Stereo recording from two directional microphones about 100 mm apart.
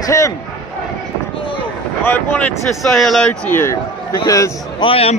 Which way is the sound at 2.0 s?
20° left (ahead or behind).